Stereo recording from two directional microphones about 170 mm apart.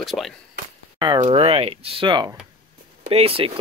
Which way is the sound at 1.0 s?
30° right (ahead or behind).